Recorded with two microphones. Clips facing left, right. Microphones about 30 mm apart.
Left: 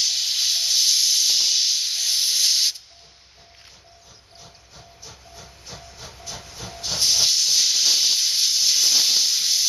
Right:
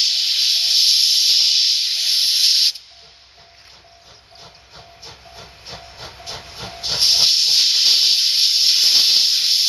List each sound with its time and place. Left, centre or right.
0.0 s music: right
4.4 s train: right